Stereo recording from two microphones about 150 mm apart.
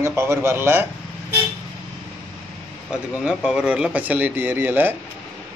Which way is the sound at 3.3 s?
5° right (ahead or behind).